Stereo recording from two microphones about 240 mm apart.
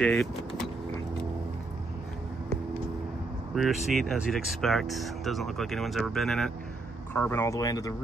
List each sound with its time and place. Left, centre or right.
0.0 s speech: centre
3.5 s speech: centre